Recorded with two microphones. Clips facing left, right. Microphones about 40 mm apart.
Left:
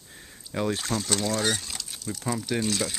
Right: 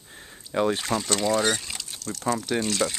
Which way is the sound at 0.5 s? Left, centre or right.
Centre.